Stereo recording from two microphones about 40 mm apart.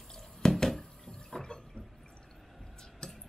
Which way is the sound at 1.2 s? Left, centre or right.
Centre.